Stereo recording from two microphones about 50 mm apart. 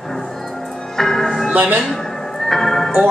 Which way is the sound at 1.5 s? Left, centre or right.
Right.